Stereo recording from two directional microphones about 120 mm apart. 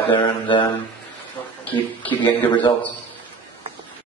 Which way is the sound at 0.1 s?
45° left (ahead or behind).